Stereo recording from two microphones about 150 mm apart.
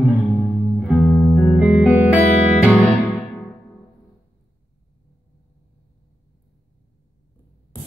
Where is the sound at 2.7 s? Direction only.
Centre (ahead or behind).